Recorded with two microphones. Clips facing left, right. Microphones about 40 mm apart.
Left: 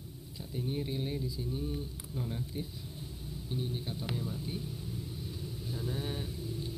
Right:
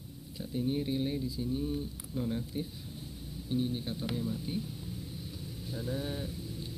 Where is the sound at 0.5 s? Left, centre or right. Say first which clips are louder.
Right 4 dB; centre.